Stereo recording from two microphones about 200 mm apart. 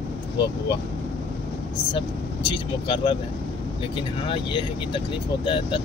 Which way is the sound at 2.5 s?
25° left (ahead or behind).